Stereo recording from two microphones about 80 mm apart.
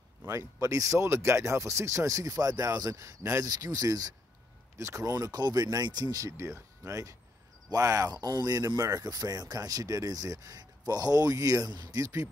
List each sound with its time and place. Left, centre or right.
0.3 s speech: right
3.4 s speech: right
4.7 s speech: right
11.7 s speech: right
12.0 s speech: right